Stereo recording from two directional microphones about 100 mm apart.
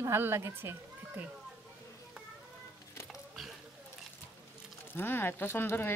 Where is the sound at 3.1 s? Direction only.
Centre (ahead or behind).